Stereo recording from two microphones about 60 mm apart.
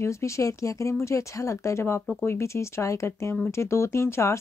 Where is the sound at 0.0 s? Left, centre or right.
Left.